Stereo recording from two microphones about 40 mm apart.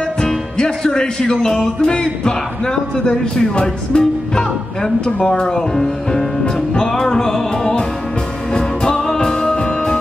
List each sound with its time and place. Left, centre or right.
0.6 s speech: centre
6.4 s music: left